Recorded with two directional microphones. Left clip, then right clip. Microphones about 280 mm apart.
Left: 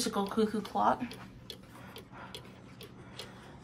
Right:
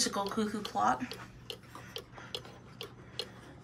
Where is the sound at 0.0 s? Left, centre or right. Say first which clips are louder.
Left 1 dB; centre.